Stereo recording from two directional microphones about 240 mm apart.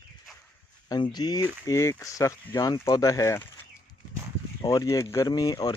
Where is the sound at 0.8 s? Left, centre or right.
Centre.